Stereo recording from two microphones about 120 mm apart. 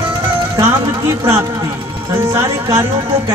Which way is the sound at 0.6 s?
25° right (ahead or behind).